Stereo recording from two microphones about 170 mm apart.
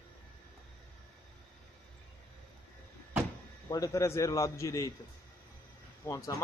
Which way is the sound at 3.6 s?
20° left (ahead or behind).